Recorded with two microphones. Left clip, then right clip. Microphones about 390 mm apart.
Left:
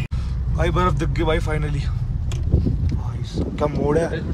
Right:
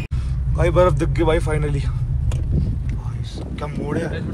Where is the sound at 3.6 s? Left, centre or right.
Centre.